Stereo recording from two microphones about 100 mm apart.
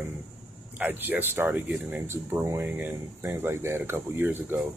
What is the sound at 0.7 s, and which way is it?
Speech, 20° right (ahead or behind).